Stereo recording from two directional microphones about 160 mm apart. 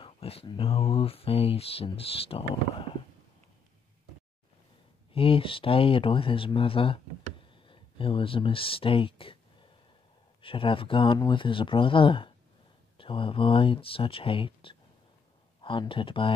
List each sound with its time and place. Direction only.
0.0 s speech: 35° left (ahead or behind)
5.1 s speech: 35° left (ahead or behind)